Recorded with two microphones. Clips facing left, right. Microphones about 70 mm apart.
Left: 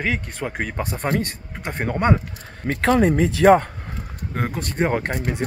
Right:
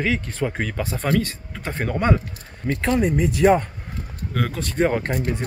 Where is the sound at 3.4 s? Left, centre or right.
Left.